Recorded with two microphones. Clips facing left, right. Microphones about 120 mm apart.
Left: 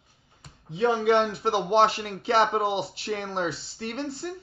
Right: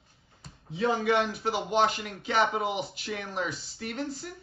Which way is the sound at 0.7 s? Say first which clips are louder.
Left 4 dB; 25° left (ahead or behind).